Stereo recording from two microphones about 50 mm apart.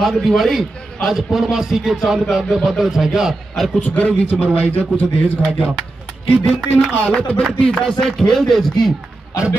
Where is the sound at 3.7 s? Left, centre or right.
Left.